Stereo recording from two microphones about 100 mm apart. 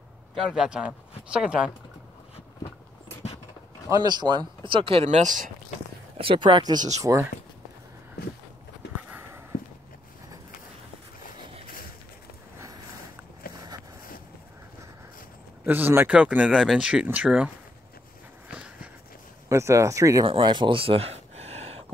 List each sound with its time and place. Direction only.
0.3 s speech: centre (ahead or behind)
3.9 s speech: 45° right (ahead or behind); by 5.2 s 80° right
6.1 s speech: 60° right (ahead or behind); by 7.2 s 35° right (ahead or behind)
15.6 s speech: 20° right (ahead or behind)
18.5 s a sound: 15° right (ahead or behind)
19.5 s speech: 30° right (ahead or behind)
20.2 s a sound: 50° right (ahead or behind); by 21.8 s 90° right